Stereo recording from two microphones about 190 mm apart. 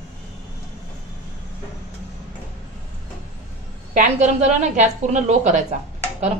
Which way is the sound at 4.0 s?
40° right (ahead or behind).